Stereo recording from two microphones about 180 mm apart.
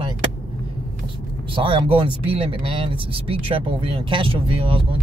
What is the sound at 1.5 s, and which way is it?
Speech, 30° right (ahead or behind).